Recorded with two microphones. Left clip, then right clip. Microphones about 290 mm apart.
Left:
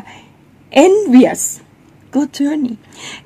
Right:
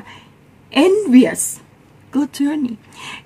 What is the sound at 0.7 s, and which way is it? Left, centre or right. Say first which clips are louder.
A woman's voice: left 4 dB; centre.